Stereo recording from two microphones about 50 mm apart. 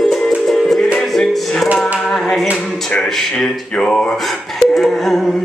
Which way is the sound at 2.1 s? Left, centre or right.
Centre.